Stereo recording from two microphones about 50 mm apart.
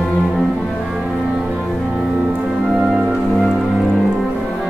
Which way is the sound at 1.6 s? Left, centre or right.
Centre.